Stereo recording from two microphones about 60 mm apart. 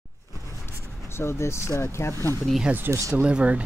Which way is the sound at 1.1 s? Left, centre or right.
Left.